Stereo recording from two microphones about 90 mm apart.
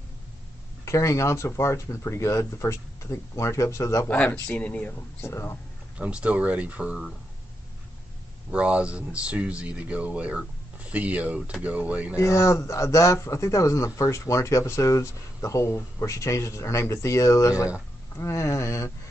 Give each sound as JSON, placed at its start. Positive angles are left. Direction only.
{"t": 0.8, "sound": "speech", "side_deg": 35}
{"t": 4.1, "sound": "speech", "side_deg": 15}
{"t": 5.2, "sound": "speech", "side_deg": 30}
{"t": 5.9, "sound": "speech", "side_deg": -15}
{"t": 8.5, "sound": "speech", "side_deg": -10}
{"t": 12.2, "sound": "speech", "side_deg": 35}